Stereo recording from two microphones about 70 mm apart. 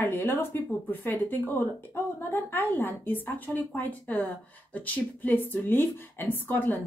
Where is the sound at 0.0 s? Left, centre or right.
Left.